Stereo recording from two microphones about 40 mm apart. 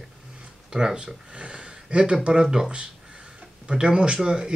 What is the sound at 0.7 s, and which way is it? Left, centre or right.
Speech, right.